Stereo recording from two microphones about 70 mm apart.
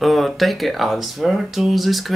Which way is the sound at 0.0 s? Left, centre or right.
Centre.